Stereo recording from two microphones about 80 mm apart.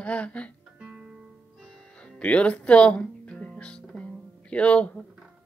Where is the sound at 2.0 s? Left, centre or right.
Centre.